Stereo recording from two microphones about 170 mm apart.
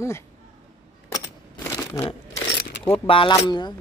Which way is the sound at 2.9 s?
30° left (ahead or behind).